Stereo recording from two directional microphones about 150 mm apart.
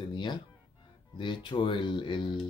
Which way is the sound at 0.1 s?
30° left (ahead or behind).